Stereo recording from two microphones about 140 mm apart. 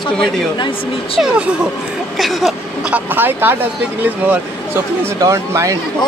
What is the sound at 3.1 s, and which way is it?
Speech, 15° right (ahead or behind).